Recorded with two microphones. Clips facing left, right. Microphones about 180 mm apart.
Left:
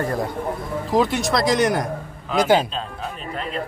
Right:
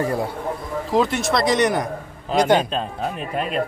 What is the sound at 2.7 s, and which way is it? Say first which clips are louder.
Speech: right 5 dB; 60° right (ahead or behind).